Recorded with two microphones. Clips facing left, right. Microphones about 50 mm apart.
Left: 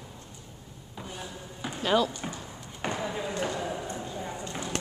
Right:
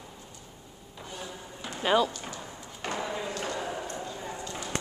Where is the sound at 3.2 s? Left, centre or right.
Centre.